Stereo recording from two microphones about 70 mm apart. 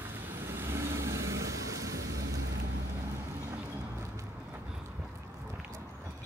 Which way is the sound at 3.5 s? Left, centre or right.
Right.